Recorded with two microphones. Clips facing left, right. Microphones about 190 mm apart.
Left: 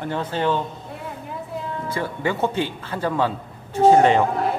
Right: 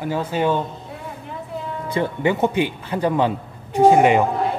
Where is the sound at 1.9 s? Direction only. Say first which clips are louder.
Right 5 dB; 20° right (ahead or behind).